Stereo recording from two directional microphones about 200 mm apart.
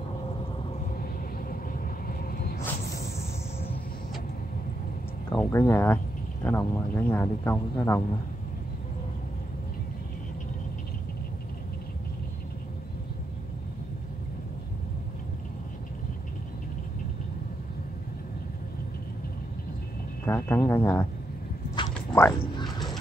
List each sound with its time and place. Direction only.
1.5 s vehicle: 45° left (ahead or behind)
5.3 s speech: 10° left (ahead or behind)
20.2 s speech: 10° left (ahead or behind)
21.9 s cat: 10° left (ahead or behind)
22.4 s a sound: 25° left (ahead or behind)